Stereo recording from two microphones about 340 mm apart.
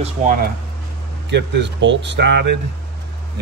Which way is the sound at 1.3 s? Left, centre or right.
Right.